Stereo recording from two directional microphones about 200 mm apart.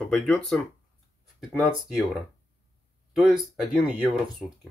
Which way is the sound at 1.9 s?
Centre (ahead or behind).